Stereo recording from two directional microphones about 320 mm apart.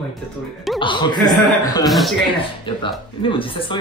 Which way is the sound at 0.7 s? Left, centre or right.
Centre.